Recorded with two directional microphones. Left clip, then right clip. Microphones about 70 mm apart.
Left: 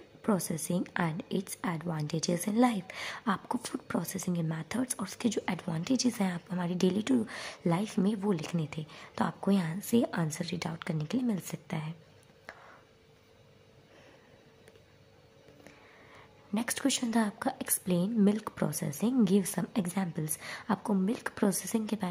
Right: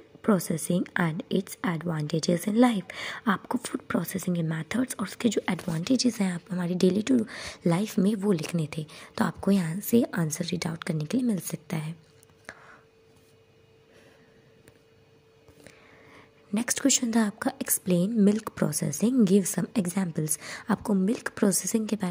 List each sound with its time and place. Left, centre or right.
0.2 s a woman's voice: right
5.9 s a woman's voice: centre; by 11.9 s right
12.5 s chopping: right
16.1 s speech: right
19.7 s speech: right
21.0 s speech: right